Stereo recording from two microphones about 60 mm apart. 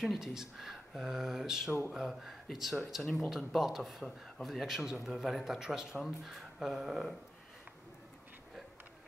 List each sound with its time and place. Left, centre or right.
0.0 s speech: centre